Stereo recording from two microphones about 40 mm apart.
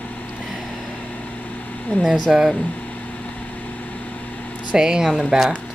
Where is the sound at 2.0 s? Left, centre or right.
Centre.